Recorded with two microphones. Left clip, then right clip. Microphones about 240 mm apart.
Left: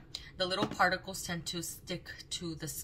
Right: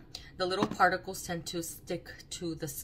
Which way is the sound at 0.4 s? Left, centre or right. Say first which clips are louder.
Right 3 dB; centre.